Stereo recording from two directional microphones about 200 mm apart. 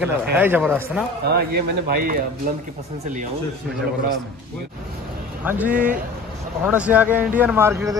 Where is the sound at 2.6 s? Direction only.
35° right (ahead or behind).